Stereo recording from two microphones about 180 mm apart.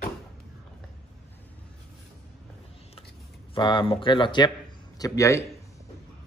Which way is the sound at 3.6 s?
25° left (ahead or behind).